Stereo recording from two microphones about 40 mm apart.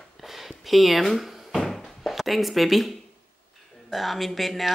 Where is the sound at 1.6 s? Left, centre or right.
Centre.